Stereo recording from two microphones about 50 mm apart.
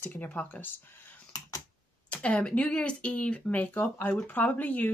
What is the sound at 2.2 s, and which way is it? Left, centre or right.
Speech, left.